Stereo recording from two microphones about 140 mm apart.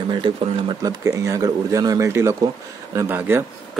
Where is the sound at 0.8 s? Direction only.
25° right (ahead or behind).